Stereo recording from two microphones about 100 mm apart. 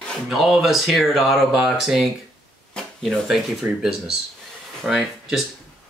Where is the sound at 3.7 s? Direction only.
25° right (ahead or behind).